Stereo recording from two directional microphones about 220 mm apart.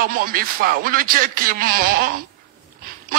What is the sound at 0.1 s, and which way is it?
Speech, 40° right (ahead or behind).